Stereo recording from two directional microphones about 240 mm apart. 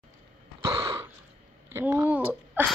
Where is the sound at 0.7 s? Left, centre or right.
Centre.